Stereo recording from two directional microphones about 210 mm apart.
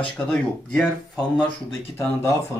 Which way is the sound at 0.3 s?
5° left (ahead or behind).